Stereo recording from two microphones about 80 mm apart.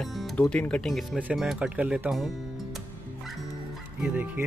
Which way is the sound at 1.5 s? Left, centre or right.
Centre.